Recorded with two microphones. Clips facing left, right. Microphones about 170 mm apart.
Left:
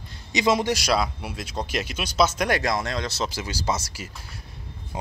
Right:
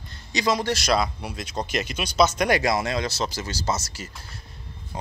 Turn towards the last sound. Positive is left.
turn(degrees=10)  # may be behind; listen again after turning